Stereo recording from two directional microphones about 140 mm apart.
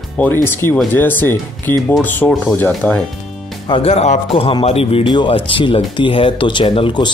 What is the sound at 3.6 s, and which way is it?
A man's voice, 40° left (ahead or behind).